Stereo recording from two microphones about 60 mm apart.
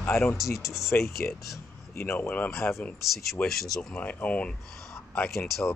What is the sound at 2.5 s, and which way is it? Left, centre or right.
Speech, left.